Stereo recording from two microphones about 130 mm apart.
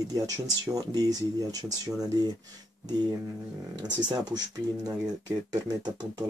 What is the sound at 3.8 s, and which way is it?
Speech, 30° right (ahead or behind).